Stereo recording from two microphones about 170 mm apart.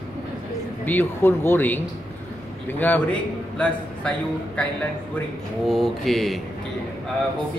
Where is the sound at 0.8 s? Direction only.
10° left (ahead or behind).